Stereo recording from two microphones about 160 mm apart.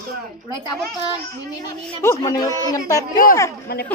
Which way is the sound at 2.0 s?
20° left (ahead or behind).